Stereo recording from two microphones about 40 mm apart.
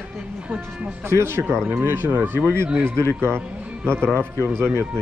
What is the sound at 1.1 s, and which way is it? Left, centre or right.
Speech, right.